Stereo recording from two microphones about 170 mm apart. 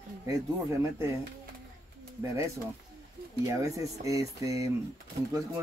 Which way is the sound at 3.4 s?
20° right (ahead or behind).